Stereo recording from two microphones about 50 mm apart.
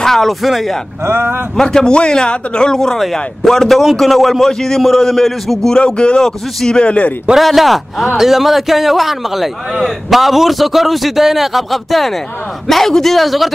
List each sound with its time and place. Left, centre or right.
0.0 s speech: centre
1.0 s speech: right
1.6 s a man's voice: centre
5.8 s speech: centre
7.3 s a man's voice: centre